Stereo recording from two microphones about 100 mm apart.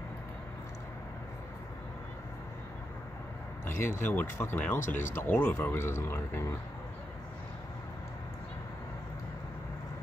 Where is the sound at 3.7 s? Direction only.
25° left (ahead or behind).